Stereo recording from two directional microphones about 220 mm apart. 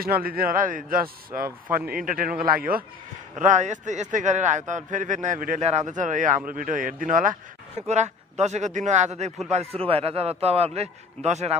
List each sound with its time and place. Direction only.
0.0 s a man's voice: 45° right (ahead or behind)